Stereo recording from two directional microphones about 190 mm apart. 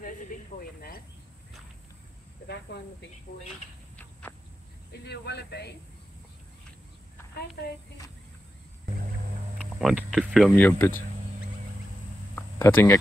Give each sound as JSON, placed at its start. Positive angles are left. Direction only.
{"t": 2.4, "sound": "speech", "side_deg": 60}
{"t": 3.9, "sound": "a sound", "side_deg": 10}
{"t": 5.0, "sound": "speech", "side_deg": 60}
{"t": 8.9, "sound": "music", "side_deg": -40}
{"t": 9.8, "sound": "speech", "side_deg": -5}
{"t": 10.5, "sound": "speech", "side_deg": 10}
{"t": 12.4, "sound": "speech", "side_deg": 10}